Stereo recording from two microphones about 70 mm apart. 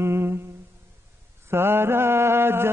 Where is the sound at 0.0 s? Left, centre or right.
Right.